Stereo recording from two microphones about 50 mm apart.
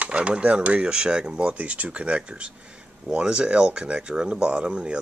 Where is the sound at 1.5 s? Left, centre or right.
Right.